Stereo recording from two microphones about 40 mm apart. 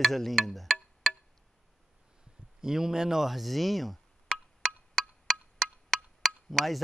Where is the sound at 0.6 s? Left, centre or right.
Centre.